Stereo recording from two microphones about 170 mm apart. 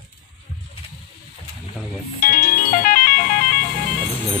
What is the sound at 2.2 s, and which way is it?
Music, 60° left (ahead or behind).